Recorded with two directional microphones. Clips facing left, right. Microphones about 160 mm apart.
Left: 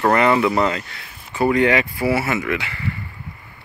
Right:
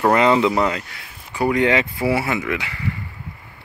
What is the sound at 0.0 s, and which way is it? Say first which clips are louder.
Speech: right 1 dB; 15° right (ahead or behind).